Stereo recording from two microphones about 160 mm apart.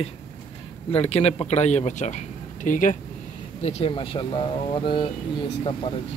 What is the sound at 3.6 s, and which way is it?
Speech, 35° left (ahead or behind).